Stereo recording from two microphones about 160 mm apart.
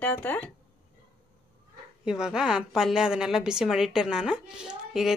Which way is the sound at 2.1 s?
5° right (ahead or behind).